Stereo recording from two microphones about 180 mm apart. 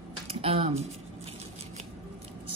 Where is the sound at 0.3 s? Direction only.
30° right (ahead or behind).